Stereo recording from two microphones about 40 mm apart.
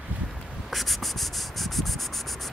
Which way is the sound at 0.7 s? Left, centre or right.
Centre.